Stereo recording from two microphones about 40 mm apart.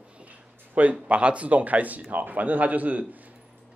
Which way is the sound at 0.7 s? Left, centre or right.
Right.